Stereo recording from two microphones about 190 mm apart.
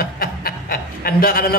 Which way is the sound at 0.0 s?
50° left (ahead or behind).